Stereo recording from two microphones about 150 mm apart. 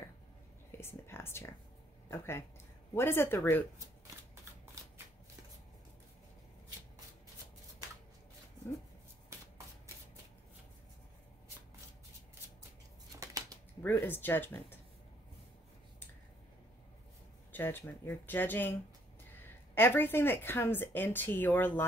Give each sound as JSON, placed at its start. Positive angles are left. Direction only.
{"t": 0.7, "sound": "a woman's voice", "side_deg": 15}
{"t": 13.2, "sound": "a sound", "side_deg": -25}
{"t": 13.8, "sound": "a woman's voice", "side_deg": 15}
{"t": 17.5, "sound": "a woman's voice", "side_deg": 15}